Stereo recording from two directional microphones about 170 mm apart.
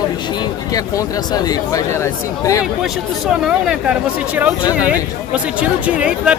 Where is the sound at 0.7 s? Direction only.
20° left (ahead or behind).